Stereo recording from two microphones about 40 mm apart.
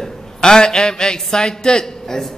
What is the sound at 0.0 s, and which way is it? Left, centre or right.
A man's voice, centre.